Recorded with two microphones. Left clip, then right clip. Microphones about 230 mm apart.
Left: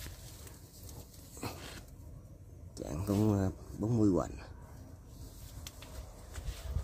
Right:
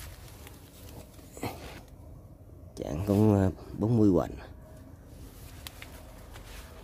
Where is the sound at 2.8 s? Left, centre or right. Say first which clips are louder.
Right 7 dB; centre.